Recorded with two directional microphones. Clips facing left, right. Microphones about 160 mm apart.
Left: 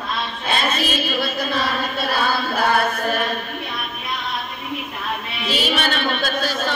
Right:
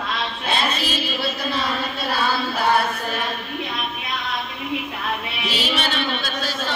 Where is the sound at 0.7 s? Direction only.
50° left (ahead or behind).